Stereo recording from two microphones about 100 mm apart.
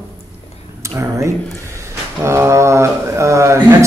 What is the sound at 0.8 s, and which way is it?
Speech, 30° right (ahead or behind).